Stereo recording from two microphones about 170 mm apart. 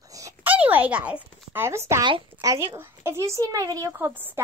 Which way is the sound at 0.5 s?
10° right (ahead or behind).